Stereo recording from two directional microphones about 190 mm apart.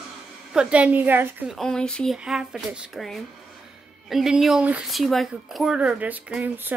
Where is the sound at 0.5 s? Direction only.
5° right (ahead or behind).